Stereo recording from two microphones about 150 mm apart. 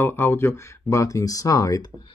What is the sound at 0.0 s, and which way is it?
Speech, 15° left (ahead or behind).